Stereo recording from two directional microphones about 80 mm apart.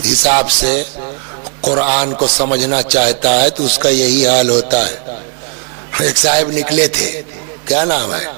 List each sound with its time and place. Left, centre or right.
0.0 s a man's voice: centre